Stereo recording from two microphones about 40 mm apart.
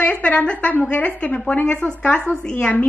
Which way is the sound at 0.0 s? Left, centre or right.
Left.